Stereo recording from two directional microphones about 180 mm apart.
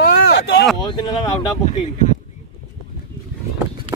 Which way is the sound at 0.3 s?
70° left (ahead or behind).